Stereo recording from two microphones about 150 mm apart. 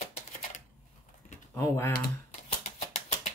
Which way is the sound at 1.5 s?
15° left (ahead or behind).